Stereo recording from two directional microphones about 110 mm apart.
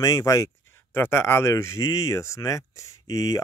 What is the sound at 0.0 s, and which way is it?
Speech, 30° left (ahead or behind).